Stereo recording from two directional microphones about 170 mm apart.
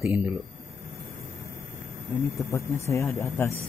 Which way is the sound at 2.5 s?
15° left (ahead or behind).